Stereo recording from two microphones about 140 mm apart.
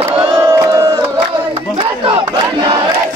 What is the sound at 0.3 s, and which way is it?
Crowd, 25° right (ahead or behind).